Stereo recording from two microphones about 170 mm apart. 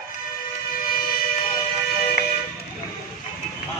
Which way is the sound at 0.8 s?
55° left (ahead or behind).